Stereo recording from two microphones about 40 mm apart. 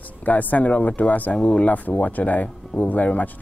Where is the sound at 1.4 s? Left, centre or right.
Left.